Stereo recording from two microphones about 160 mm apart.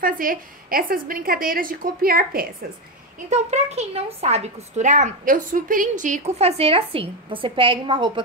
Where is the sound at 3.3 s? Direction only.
45° right (ahead or behind).